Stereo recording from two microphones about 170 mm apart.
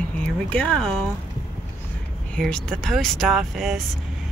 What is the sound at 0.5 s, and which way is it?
Speech, 5° left (ahead or behind).